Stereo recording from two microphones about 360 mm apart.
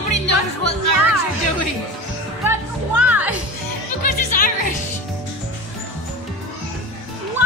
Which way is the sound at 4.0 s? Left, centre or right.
Left.